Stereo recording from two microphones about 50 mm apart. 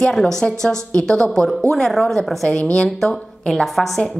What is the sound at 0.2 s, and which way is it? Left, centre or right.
A woman's voice, centre.